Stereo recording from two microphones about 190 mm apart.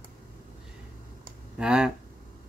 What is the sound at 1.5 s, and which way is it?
Speech, 5° right (ahead or behind).